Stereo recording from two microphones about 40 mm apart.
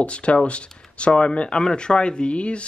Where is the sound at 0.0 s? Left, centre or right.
Left.